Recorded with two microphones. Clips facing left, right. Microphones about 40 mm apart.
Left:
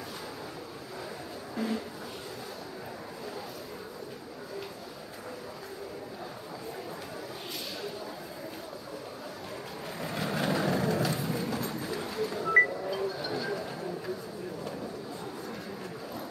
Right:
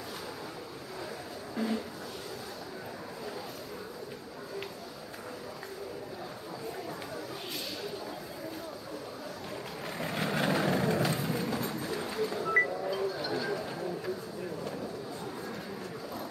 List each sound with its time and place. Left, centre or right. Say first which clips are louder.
1.5 s speech: even; centre
9.9 s vehicle: right 1 dB; centre
11.4 s a sound: even; centre